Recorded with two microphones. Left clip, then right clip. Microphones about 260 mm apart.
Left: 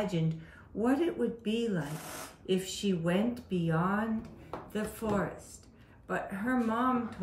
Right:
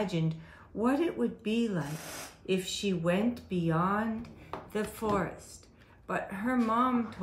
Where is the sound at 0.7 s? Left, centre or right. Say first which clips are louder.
Even; right.